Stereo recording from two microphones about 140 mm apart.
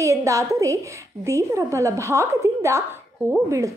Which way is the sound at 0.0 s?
20° right (ahead or behind).